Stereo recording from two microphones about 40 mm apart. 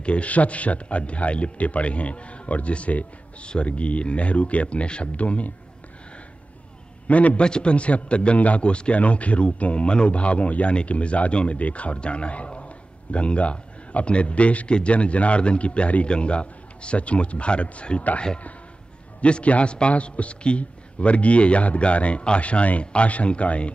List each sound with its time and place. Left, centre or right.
0.0 s speech: left
7.1 s speech: left
7.4 s a man's voice: left
19.2 s speech: left